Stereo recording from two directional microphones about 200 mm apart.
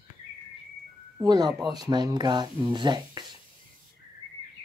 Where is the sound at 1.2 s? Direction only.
20° right (ahead or behind).